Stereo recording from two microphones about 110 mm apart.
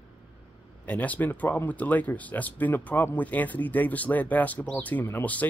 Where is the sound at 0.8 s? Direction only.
15° left (ahead or behind).